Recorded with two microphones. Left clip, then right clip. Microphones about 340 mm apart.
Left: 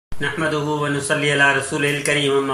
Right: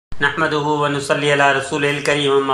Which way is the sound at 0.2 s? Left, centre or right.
Right.